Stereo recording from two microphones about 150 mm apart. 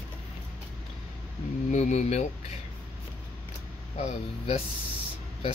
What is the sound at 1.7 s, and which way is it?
Speech, 50° left (ahead or behind).